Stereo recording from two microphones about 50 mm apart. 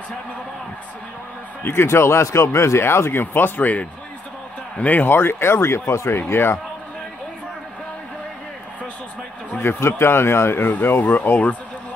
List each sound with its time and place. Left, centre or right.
1.7 s speech: left
5.0 s speech: left
9.6 s speech: left
10.7 s speech: left